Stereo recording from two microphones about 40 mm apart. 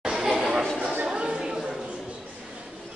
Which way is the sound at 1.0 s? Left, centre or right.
Right.